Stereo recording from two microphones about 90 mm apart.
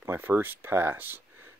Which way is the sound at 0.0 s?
25° right (ahead or behind).